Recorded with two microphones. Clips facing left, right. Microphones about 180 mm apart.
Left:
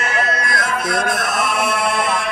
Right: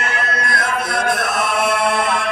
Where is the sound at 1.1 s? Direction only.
55° right (ahead or behind).